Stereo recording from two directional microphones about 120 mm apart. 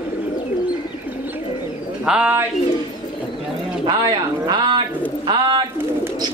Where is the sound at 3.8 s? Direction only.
30° right (ahead or behind).